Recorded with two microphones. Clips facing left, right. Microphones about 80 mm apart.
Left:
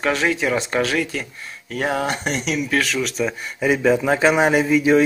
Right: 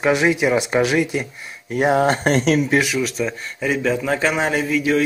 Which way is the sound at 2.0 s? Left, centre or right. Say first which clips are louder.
Right 6 dB; right.